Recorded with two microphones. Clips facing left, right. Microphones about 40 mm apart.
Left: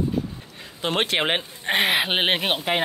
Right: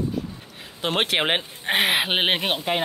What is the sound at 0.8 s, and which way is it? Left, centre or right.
Speech, centre.